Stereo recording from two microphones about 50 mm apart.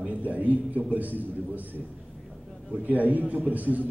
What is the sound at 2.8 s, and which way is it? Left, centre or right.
A man's voice, right.